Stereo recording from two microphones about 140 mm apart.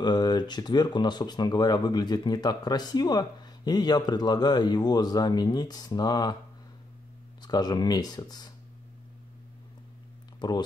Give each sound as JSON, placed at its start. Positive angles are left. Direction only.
{"t": 0.0, "sound": "speech", "side_deg": 30}
{"t": 7.4, "sound": "speech", "side_deg": 30}